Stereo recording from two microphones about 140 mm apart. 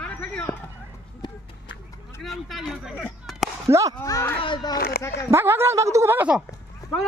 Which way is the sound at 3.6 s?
20° right (ahead or behind).